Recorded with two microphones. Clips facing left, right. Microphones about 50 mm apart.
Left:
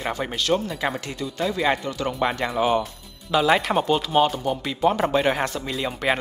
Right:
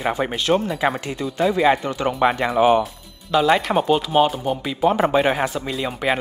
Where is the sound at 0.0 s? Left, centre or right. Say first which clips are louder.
Right 4 dB; centre.